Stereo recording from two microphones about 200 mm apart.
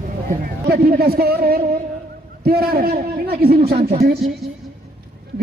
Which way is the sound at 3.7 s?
30° right (ahead or behind).